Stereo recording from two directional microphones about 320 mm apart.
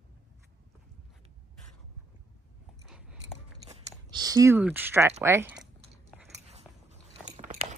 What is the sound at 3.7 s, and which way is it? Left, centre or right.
Speech, centre.